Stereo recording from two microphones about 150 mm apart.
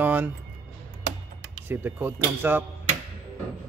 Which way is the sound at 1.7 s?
15° right (ahead or behind).